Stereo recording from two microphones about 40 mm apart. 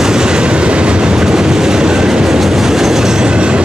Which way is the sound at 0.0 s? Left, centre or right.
Centre.